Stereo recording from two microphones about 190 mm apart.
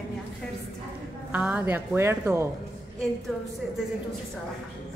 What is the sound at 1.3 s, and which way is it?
A woman's voice, 10° right (ahead or behind).